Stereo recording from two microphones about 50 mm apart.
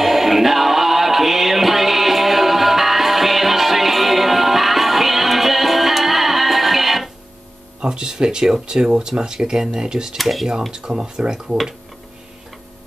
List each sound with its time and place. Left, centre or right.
0.0 s music: centre
7.8 s cutlery: centre
10.1 s cutlery: centre